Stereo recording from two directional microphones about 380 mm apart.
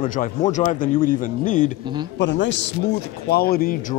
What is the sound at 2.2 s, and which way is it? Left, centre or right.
Speech, left.